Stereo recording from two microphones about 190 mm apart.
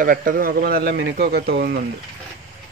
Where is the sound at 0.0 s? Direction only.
45° right (ahead or behind).